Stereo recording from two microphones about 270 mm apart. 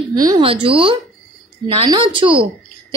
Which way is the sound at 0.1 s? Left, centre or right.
Centre.